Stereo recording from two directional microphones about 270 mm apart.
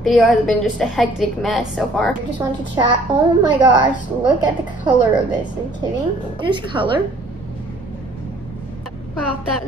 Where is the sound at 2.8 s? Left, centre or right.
Centre.